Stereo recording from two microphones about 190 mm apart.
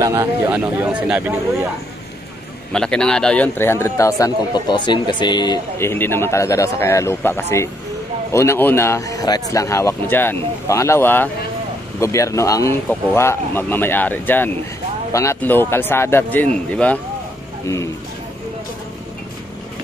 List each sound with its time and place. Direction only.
0.0 s a man's voice: 15° right (ahead or behind)
2.7 s a man's voice: 5° left (ahead or behind)